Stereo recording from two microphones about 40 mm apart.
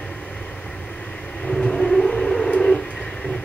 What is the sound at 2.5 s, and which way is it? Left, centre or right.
Bird, left.